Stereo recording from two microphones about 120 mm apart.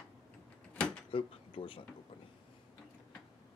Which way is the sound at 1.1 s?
50° left (ahead or behind).